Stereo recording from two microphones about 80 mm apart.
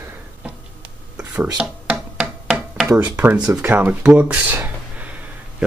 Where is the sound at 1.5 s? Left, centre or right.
Centre.